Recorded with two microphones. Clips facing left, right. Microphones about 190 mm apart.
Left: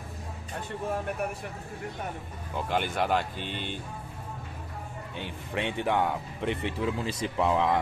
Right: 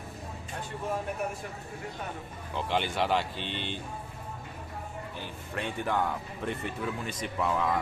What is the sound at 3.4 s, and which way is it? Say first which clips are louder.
Speech: left 1 dB; 45° left (ahead or behind).